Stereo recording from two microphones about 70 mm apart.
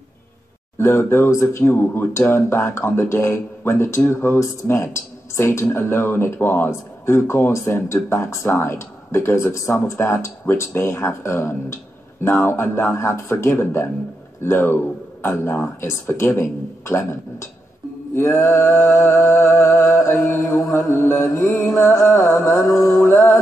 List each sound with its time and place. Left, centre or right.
0.7 s speech: left